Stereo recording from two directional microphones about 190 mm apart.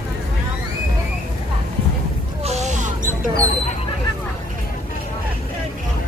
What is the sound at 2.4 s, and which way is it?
Mouse, 35° right (ahead or behind).